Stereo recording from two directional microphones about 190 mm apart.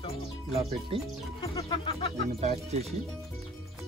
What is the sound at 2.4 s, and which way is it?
Speech, 35° right (ahead or behind).